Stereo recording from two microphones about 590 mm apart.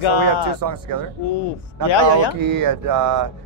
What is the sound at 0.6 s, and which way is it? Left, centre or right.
Speech, right.